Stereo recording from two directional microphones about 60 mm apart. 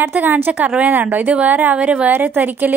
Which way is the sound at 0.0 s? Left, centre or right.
Right.